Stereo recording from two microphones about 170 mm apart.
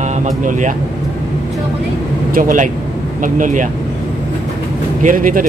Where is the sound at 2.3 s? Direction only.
50° right (ahead or behind).